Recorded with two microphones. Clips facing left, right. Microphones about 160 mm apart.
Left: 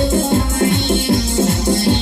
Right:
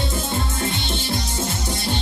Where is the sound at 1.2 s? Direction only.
90° left.